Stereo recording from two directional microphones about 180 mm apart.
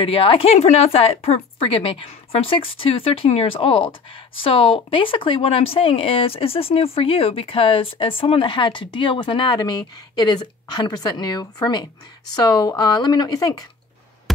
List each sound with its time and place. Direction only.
0.0 s speech: 30° left (ahead or behind)